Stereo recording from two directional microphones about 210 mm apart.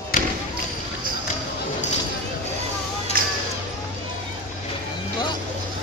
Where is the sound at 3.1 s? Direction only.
45° right (ahead or behind).